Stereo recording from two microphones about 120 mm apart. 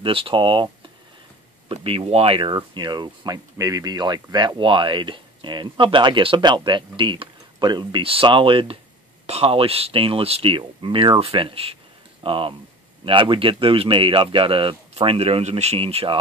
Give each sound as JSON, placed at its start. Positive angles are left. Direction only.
{"t": 0.0, "sound": "speech", "side_deg": -45}
{"t": 1.7, "sound": "speech", "side_deg": -50}
{"t": 2.5, "sound": "speech", "side_deg": -40}
{"t": 9.2, "sound": "speech", "side_deg": -55}